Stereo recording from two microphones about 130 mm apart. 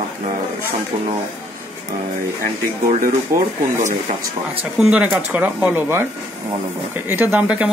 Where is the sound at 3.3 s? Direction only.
25° right (ahead or behind).